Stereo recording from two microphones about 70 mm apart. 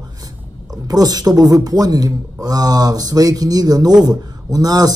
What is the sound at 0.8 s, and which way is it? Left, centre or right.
Speech, right.